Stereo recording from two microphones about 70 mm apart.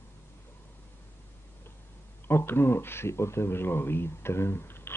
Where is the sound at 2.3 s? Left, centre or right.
Left.